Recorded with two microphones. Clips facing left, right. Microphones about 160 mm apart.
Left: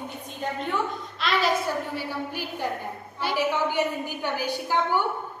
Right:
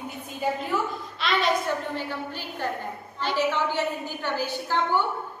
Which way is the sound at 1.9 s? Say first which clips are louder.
Left 1 dB; 10° left (ahead or behind).